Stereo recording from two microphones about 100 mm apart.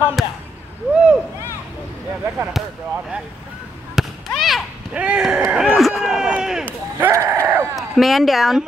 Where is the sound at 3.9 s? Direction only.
Centre (ahead or behind).